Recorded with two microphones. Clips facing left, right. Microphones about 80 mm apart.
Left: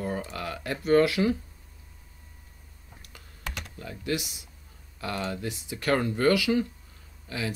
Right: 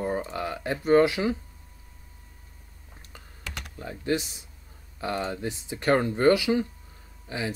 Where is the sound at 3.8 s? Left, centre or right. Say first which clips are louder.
Right 3 dB; right.